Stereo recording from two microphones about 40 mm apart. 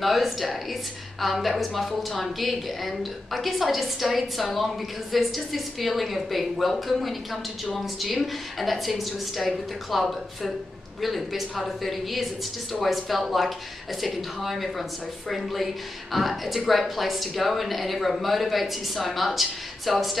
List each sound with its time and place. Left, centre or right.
0.0 s a woman's voice: centre